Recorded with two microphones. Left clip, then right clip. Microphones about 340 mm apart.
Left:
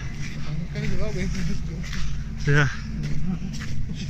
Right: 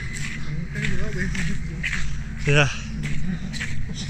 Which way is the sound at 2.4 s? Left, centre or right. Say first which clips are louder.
Right 3 dB; centre.